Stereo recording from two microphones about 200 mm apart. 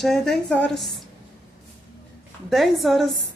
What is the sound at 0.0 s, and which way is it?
Speech, centre (ahead or behind).